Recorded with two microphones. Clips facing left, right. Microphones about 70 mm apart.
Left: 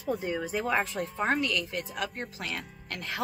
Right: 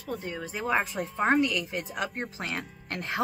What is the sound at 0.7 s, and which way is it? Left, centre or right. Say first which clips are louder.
Speech: right 4 dB; centre.